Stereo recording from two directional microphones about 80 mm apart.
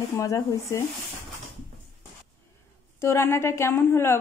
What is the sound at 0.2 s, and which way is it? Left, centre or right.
Speech, left.